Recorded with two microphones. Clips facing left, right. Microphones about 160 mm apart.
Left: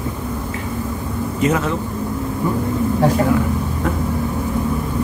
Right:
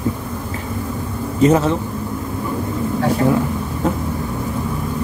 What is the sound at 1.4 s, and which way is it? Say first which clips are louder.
Speech: right 5 dB; 30° right (ahead or behind).